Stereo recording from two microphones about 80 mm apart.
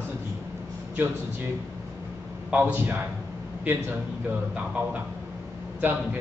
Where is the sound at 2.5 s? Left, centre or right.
Right.